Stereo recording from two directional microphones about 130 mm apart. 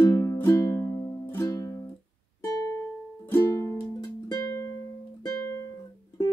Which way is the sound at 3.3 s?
20° left (ahead or behind).